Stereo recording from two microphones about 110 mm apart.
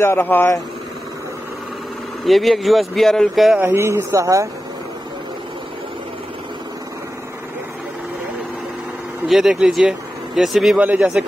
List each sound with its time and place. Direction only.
0.0 s speech: 20° left (ahead or behind)
2.2 s speech: centre (ahead or behind)
3.6 s speech: 25° right (ahead or behind)
9.3 s speech: 5° right (ahead or behind)